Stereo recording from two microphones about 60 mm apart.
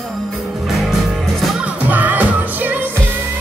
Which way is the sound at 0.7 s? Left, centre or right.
Centre.